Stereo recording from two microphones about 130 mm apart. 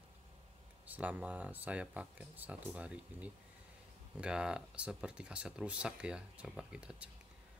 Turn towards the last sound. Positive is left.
turn(degrees=-10)  # may be behind; listen again after turning